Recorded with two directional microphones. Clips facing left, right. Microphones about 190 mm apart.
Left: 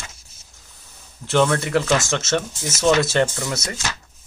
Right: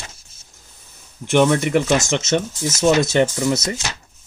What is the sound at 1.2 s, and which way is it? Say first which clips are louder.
Speech: right 3 dB; 15° right (ahead or behind).